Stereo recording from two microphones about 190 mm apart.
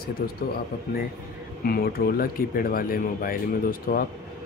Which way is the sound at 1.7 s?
55° left (ahead or behind).